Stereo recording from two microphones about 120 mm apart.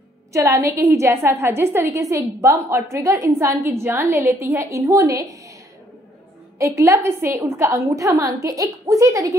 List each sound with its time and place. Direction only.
0.3 s a woman's voice: 25° right (ahead or behind)
6.6 s a woman's voice: 25° right (ahead or behind)